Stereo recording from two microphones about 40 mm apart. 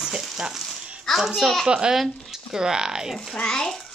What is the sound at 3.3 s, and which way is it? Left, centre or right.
Speech, centre.